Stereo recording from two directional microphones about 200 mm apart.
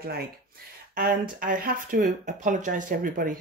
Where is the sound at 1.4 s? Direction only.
40° right (ahead or behind).